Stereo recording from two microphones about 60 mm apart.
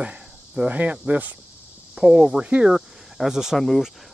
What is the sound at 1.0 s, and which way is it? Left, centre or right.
Speech, right.